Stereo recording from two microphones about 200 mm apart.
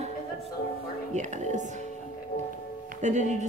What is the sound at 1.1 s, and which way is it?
Music, 35° right (ahead or behind).